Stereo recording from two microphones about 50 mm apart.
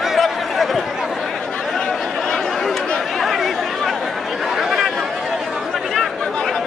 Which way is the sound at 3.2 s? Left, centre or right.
Centre.